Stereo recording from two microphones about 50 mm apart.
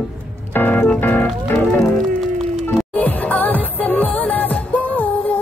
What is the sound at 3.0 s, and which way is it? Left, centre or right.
Music, left.